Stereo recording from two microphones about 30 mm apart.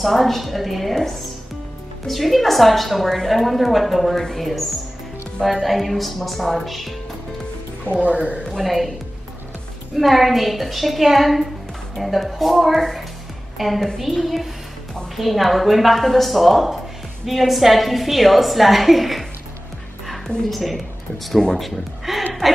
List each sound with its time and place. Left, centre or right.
0.0 s a woman's voice: centre
2.0 s a woman's voice: centre
8.0 s speech: right
8.5 s a woman's voice: centre
9.9 s a woman's voice: centre
20.2 s a woman's voice: centre
22.4 s a sound: centre